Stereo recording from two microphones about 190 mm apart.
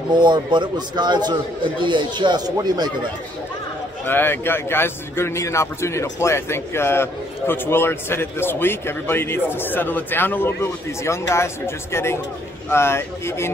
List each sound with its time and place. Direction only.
0.1 s a man's voice: 25° right (ahead or behind)
4.0 s a man's voice: 10° left (ahead or behind)